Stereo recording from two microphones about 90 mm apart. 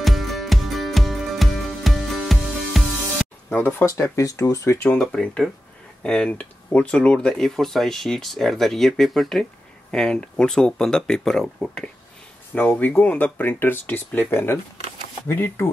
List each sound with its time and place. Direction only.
0.0 s music: centre (ahead or behind)
3.4 s speech: 25° left (ahead or behind)
4.8 s speech: 10° left (ahead or behind)
12.5 s speech: 20° left (ahead or behind)